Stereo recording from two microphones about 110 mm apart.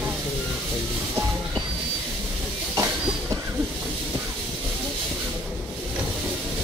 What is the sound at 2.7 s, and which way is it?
Train, 30° right (ahead or behind).